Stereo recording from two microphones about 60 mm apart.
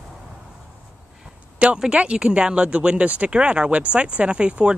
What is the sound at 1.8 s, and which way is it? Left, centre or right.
Speech, centre.